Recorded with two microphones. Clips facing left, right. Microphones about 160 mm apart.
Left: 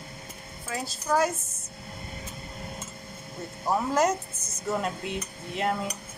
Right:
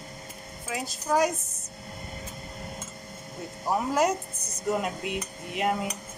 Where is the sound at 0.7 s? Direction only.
15° right (ahead or behind).